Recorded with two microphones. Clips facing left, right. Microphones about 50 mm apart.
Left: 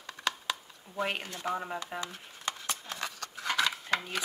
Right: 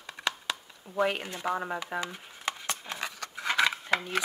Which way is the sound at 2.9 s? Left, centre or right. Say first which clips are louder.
Right 2 dB; centre.